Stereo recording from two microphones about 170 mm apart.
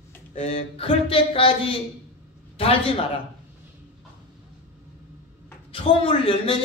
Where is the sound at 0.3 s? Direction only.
35° left (ahead or behind).